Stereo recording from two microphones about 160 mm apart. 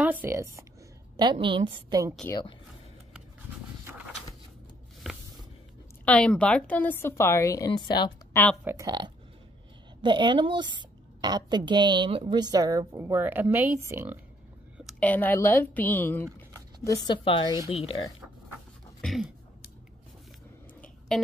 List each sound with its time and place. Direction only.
0.0 s speech: 10° right (ahead or behind)
1.1 s a woman's voice: 30° right (ahead or behind)
6.0 s a woman's voice: 5° left (ahead or behind); by 8.1 s 30° left (ahead or behind)
8.3 s speech: 10° left (ahead or behind)
8.6 s a woman's voice: 20° right (ahead or behind)
15.0 s a woman's voice: 10° left (ahead or behind)
16.8 s speech: 25° left (ahead or behind)
18.9 s speech: centre (ahead or behind)
21.1 s a sound: centre (ahead or behind)